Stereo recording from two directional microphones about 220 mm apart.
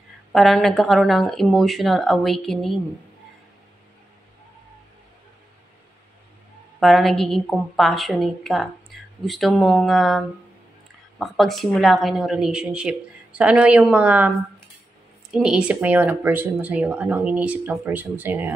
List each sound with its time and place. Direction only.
0.3 s a woman's voice: centre (ahead or behind)
6.8 s a woman's voice: centre (ahead or behind)
15.3 s speech: 5° right (ahead or behind)